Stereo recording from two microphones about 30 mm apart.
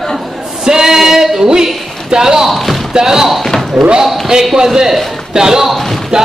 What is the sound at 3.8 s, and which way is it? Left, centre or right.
Basketball bounce, right.